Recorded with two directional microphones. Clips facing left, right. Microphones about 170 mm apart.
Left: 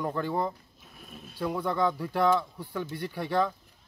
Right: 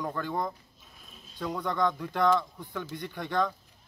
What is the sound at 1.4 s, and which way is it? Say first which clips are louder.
Speech: left 2 dB; 5° left (ahead or behind).